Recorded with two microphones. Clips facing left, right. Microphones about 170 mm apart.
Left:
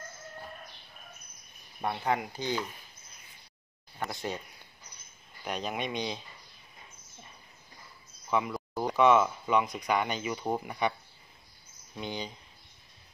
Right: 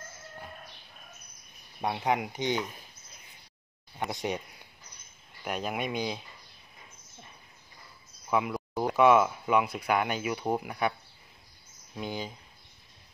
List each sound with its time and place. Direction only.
1.8 s speech: 15° right (ahead or behind)
4.0 s speech: 15° right (ahead or behind)
5.4 s speech: 5° right (ahead or behind)
8.3 s speech: 5° right (ahead or behind)